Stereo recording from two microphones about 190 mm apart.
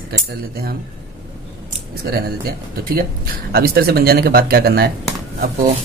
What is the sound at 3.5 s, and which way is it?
Speech, 55° right (ahead or behind).